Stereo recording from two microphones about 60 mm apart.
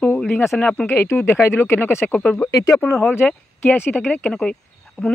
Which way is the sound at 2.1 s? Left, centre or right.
Centre.